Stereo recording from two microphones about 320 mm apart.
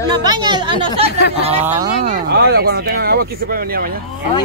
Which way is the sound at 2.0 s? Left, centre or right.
Right.